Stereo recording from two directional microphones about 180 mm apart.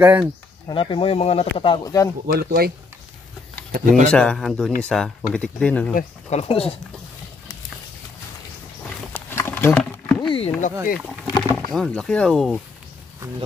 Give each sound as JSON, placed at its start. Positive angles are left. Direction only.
{"t": 0.0, "sound": "speech", "side_deg": -10}
{"t": 0.7, "sound": "speech", "side_deg": 30}
{"t": 2.2, "sound": "speech", "side_deg": -60}
{"t": 3.7, "sound": "speech", "side_deg": -45}
{"t": 4.1, "sound": "speech", "side_deg": 5}
{"t": 5.9, "sound": "speech", "side_deg": 35}
{"t": 9.1, "sound": "a sound", "side_deg": 10}
{"t": 11.2, "sound": "a sound", "side_deg": 25}
{"t": 11.7, "sound": "speech", "side_deg": 5}